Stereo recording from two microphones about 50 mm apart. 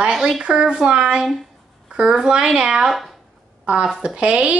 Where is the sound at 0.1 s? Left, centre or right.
Centre.